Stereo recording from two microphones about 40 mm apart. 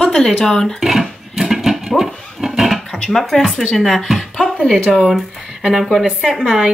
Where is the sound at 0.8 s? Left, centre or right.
Centre.